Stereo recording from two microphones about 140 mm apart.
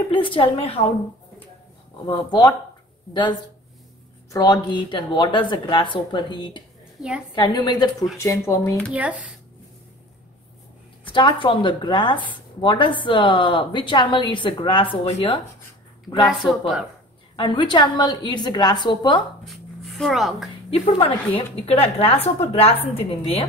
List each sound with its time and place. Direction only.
0.1 s a woman's voice: 40° left (ahead or behind)
2.0 s a woman's voice: 30° left (ahead or behind)
8.9 s speech: 10° right (ahead or behind)
11.1 s a woman's voice: 35° left (ahead or behind)
16.3 s speech: centre (ahead or behind)
17.4 s a woman's voice: 35° left (ahead or behind)
19.4 s a sound: centre (ahead or behind)
20.8 s a woman's voice: 40° left (ahead or behind)